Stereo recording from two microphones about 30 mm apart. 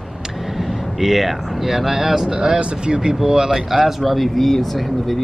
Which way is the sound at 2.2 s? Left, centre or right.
Right.